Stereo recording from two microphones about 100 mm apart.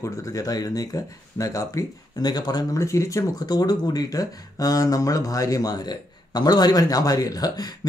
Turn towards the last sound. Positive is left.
turn(degrees=40)  # may be behind; listen again after turning